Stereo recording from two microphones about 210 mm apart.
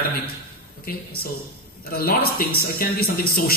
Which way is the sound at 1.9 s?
45° left (ahead or behind).